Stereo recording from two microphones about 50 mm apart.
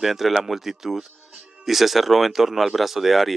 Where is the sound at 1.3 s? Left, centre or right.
Centre.